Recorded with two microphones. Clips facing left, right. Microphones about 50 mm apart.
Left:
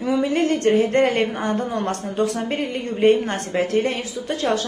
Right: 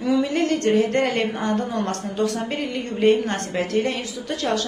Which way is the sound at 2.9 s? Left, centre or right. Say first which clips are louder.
Left 1 dB; centre.